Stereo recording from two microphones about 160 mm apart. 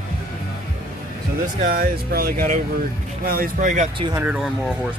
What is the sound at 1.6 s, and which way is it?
Speech, 65° right (ahead or behind).